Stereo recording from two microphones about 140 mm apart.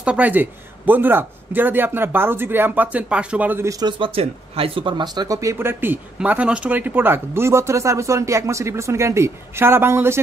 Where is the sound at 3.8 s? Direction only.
40° right (ahead or behind).